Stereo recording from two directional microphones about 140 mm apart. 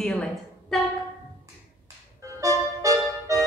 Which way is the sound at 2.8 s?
20° right (ahead or behind).